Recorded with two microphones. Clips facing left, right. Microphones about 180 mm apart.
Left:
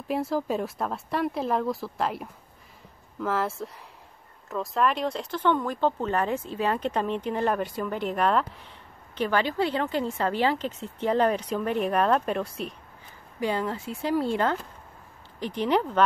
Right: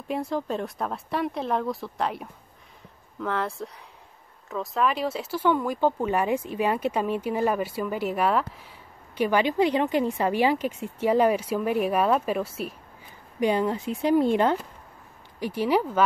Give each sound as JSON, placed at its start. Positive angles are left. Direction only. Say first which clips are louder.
{"t": 0.1, "sound": "speech", "louder": "left 1 dB", "side_deg": 5}
{"t": 13.4, "sound": "speech", "louder": "right 4 dB", "side_deg": -15}
{"t": 15.4, "sound": "speech", "louder": "right 1 dB", "side_deg": -5}